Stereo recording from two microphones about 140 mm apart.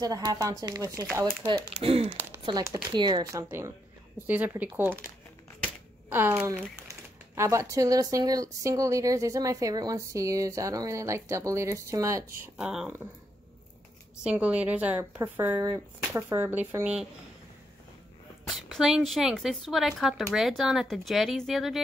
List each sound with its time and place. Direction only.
0.0 s speech: 25° right (ahead or behind)
1.2 s speech: 40° right (ahead or behind)
2.4 s a woman's voice: 25° right (ahead or behind); by 4.6 s 10° right (ahead or behind)
6.0 s a woman's voice: 15° right (ahead or behind)
12.5 s speech: 5° right (ahead or behind)
14.2 s a woman's voice: 10° right (ahead or behind)
18.5 s speech: centre (ahead or behind)